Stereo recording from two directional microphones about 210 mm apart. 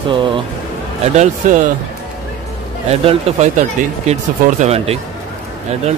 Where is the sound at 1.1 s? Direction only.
35° right (ahead or behind).